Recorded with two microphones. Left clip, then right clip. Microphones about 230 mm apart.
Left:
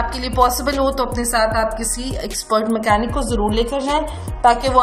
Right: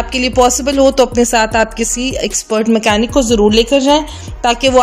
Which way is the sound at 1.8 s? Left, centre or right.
Right.